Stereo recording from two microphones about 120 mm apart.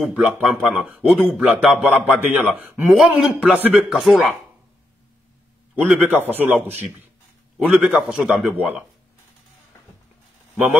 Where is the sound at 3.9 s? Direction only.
5° right (ahead or behind).